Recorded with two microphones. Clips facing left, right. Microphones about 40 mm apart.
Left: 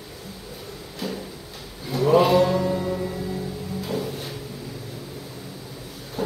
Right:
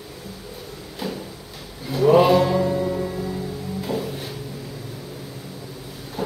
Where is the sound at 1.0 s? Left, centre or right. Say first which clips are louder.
Right 1 dB; centre.